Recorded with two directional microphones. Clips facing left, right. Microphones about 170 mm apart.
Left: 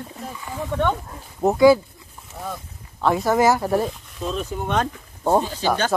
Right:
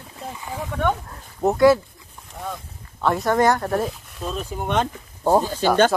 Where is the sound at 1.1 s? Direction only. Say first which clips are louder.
Left 1 dB; centre (ahead or behind).